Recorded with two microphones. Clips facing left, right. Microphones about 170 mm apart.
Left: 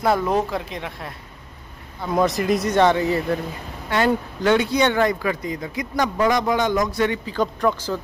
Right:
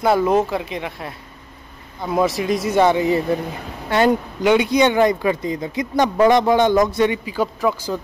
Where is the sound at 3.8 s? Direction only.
25° right (ahead or behind).